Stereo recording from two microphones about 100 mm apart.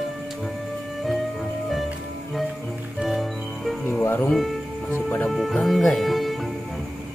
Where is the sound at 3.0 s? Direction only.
Centre (ahead or behind).